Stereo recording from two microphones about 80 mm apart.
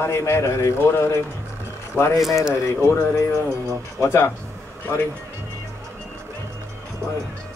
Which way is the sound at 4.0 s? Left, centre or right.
Left.